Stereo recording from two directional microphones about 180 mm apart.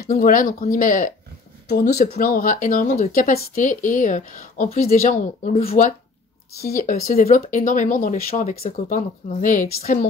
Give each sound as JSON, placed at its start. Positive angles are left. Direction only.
{"t": 0.1, "sound": "speech", "side_deg": 50}
{"t": 1.7, "sound": "speech", "side_deg": 65}